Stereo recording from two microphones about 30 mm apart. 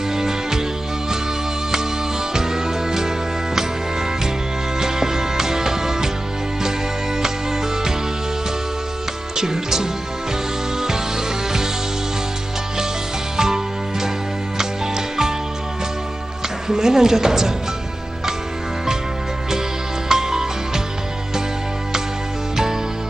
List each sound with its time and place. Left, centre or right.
0.1 s music: centre
2.3 s music: centre
4.7 s music: centre
9.4 s music: centre
13.4 s music: centre
16.6 s a woman's voice: centre
20.1 s music: centre